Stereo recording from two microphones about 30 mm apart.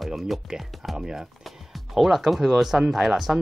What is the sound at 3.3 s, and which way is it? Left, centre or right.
Speech, right.